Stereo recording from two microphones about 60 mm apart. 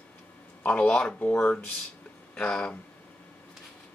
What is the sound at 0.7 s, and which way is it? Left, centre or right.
Speech, left.